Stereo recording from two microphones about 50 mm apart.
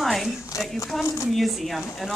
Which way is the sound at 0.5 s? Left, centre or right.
Left.